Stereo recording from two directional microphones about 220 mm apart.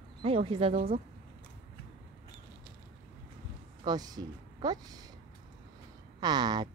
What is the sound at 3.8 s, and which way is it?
Speech, 20° right (ahead or behind).